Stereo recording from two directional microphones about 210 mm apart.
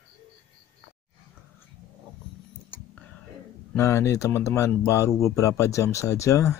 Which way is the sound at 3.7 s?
10° left (ahead or behind).